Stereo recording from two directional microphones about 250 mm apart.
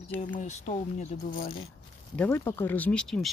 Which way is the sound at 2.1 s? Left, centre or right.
Centre.